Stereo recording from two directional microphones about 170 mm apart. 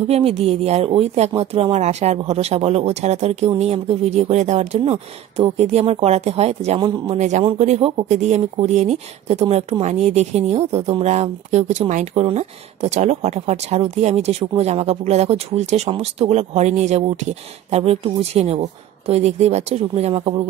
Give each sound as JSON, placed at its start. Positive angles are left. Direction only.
{"t": 0.1, "sound": "speech", "side_deg": -35}